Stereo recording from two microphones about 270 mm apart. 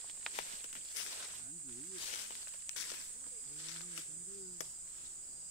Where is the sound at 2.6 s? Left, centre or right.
Left.